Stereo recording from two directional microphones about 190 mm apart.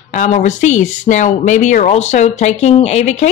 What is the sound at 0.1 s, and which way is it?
Speech, 40° left (ahead or behind).